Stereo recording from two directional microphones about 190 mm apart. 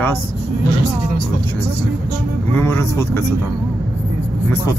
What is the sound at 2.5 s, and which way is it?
Speech, 10° left (ahead or behind).